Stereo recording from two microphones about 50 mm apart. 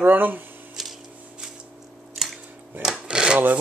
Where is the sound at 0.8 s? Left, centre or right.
Centre.